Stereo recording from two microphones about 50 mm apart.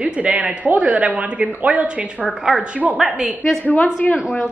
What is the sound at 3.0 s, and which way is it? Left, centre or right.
Speech, centre.